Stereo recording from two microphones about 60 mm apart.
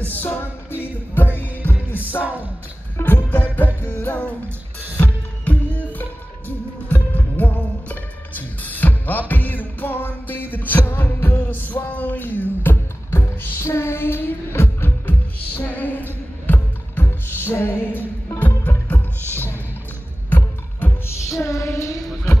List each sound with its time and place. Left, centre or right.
0.0 s music: left
3.2 s music: left
13.1 s music: left
18.9 s music: left
21.4 s child singing: left